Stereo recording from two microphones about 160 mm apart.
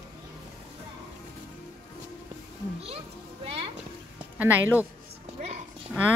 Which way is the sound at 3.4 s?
35° right (ahead or behind).